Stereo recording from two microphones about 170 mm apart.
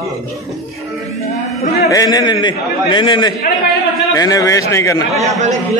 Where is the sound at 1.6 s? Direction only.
65° left (ahead or behind).